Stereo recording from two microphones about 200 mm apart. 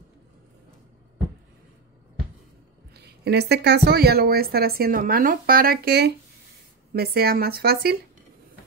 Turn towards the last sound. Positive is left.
turn(degrees=-50)  # may be behind; listen again after turning